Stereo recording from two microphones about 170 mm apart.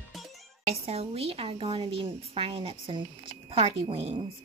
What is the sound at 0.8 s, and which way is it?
Speech, 35° right (ahead or behind).